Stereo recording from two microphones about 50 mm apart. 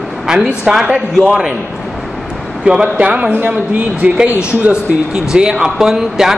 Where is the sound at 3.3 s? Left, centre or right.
Right.